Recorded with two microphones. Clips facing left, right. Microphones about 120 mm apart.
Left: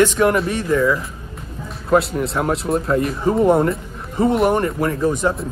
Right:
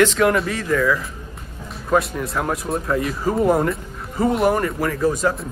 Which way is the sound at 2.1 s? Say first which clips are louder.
Left 3 dB; 30° left (ahead or behind).